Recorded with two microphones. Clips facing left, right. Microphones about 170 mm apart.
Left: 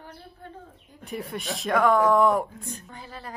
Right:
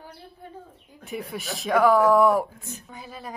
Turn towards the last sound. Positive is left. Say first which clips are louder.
# right 2 dB
turn(degrees=-15)  # may be behind; listen again after turning